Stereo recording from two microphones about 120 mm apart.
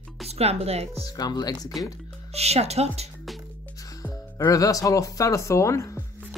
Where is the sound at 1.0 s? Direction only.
30° left (ahead or behind).